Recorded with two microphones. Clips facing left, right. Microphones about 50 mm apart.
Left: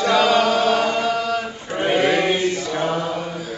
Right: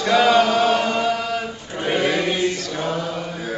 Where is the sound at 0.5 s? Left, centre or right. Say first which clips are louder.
Even; right.